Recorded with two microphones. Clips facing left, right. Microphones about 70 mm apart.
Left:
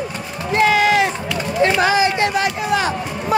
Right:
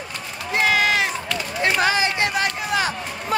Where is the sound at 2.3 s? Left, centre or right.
Centre.